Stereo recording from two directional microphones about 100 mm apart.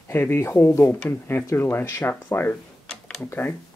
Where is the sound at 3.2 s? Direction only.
20° left (ahead or behind).